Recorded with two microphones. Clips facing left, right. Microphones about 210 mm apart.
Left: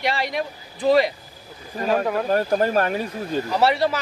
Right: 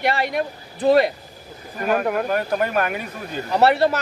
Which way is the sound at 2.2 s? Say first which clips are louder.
Left 2 dB; 30° left (ahead or behind).